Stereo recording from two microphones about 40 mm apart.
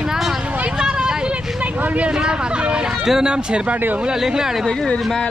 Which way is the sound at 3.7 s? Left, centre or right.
Right.